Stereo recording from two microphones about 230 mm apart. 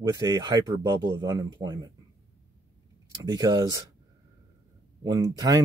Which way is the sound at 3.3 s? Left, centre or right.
Centre.